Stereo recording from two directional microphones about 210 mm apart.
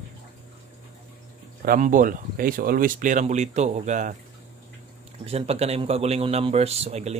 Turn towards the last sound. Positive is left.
turn(degrees=-30)  # may be behind; listen again after turning